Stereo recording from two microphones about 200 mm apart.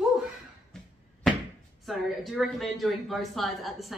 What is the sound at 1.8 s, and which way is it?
Speech, centre (ahead or behind).